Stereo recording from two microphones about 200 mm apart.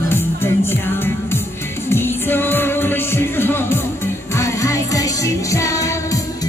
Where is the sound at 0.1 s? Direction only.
10° left (ahead or behind).